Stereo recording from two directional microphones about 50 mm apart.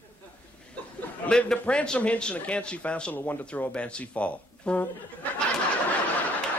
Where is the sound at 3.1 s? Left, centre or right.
Left.